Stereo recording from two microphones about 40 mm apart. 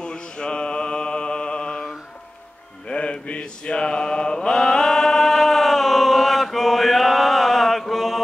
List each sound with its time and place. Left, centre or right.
0.0 s mantra: left
2.9 s mantra: left; by 8.2 s centre